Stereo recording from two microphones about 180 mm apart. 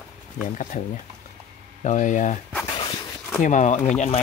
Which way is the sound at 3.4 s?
45° left (ahead or behind).